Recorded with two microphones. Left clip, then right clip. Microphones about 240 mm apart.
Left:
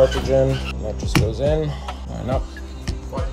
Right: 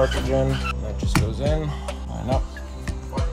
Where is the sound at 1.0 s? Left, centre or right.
Centre.